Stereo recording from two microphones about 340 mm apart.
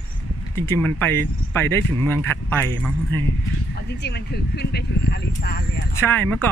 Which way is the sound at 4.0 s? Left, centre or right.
Left.